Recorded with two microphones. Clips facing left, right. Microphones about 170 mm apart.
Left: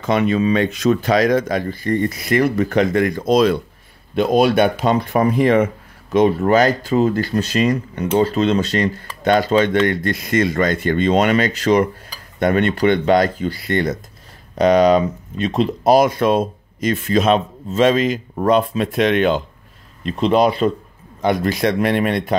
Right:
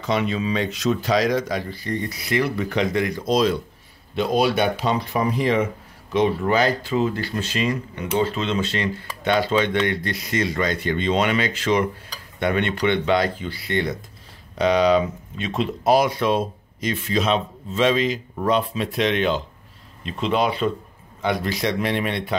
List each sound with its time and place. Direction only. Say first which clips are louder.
0.0 s speech: left 6 dB; 55° left (ahead or behind)
20.1 s speech: left 6 dB; 40° left (ahead or behind)